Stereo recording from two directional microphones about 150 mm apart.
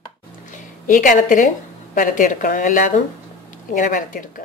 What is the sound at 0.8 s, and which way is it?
A woman's voice, 60° left (ahead or behind).